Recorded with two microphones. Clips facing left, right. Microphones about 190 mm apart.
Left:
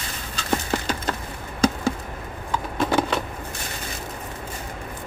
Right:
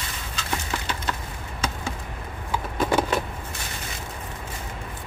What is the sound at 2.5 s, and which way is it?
Vehicle, 5° right (ahead or behind).